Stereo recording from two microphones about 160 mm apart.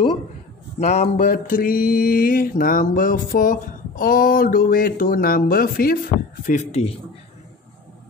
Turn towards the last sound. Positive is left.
turn(degrees=45)  # may be behind; listen again after turning